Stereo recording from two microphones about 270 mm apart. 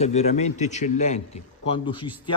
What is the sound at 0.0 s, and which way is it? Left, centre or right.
A man's voice, left.